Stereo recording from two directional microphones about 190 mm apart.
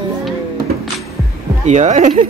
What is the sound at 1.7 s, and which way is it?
Speech, 40° right (ahead or behind).